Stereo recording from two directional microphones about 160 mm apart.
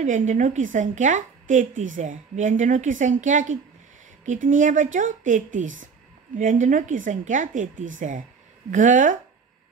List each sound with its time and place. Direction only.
0.0 s a woman's voice: 50° right (ahead or behind)